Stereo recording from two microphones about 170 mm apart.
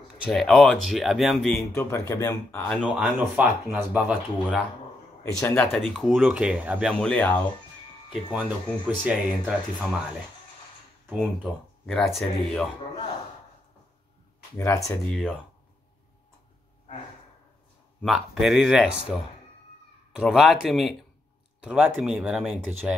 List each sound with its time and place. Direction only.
0.2 s speech: centre (ahead or behind)
1.8 s speech: 15° left (ahead or behind)
2.7 s speech: centre (ahead or behind)
5.2 s speech: 15° left (ahead or behind)
5.7 s speech: centre (ahead or behind)
7.0 s speech: 10° left (ahead or behind)
8.1 s speech: 5° right (ahead or behind)
11.8 s speech: centre (ahead or behind)
14.6 s speech: 20° left (ahead or behind)
15.0 s speech: 5° left (ahead or behind)
18.0 s speech: centre (ahead or behind)
20.1 s speech: 5° right (ahead or behind)